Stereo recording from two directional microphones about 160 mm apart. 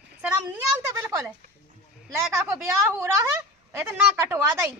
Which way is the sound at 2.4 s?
15° right (ahead or behind).